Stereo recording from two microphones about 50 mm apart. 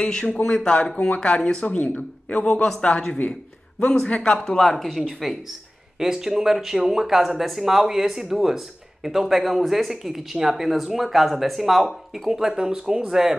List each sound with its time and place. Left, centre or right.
0.0 s speech: centre
3.8 s a man's voice: centre
4.7 s speech: centre
5.9 s speech: centre